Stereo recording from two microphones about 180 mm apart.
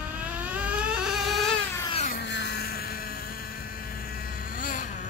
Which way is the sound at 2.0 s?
65° left (ahead or behind).